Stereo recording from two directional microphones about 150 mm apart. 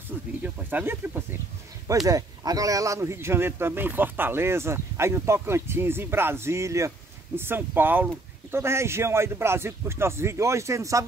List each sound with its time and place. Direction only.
0.4 s speech: 10° right (ahead or behind)
2.0 s speech: 25° right (ahead or behind)